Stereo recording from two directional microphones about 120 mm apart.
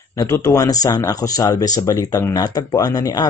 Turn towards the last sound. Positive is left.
turn(degrees=30)  # may be behind; listen again after turning